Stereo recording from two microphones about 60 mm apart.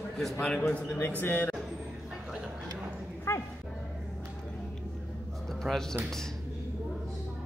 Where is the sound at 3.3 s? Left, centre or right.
Left.